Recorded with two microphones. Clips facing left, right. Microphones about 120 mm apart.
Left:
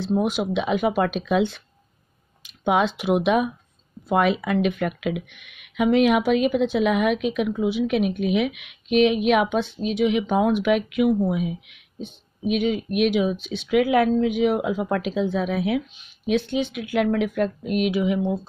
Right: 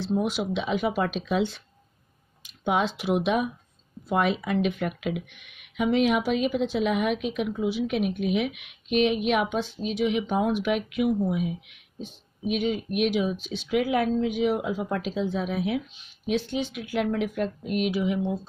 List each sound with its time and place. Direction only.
0.0 s speech: 55° left (ahead or behind)
2.6 s speech: 70° left (ahead or behind)